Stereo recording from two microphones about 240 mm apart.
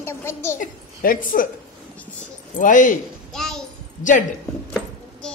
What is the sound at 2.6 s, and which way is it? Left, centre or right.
Speech, left.